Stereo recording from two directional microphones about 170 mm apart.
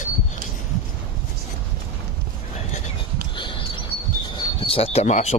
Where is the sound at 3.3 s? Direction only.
30° left (ahead or behind).